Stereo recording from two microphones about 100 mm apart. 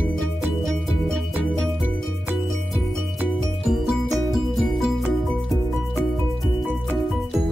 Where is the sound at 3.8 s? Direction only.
Centre (ahead or behind).